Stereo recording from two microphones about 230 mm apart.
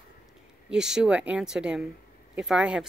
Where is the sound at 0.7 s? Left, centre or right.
Centre.